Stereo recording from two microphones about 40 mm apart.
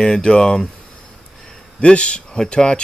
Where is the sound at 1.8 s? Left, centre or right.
Left.